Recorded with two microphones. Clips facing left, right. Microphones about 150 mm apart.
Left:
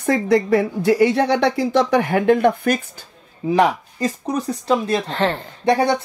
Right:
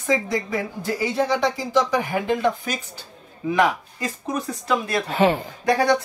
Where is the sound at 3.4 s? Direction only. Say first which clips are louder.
Left 4 dB; 35° left (ahead or behind).